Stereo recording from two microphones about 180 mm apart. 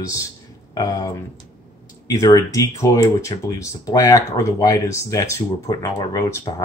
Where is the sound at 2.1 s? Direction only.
20° left (ahead or behind).